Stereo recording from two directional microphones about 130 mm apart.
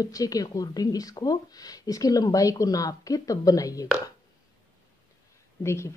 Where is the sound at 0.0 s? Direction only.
30° left (ahead or behind).